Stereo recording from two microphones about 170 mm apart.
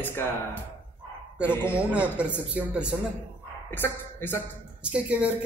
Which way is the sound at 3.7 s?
15° left (ahead or behind).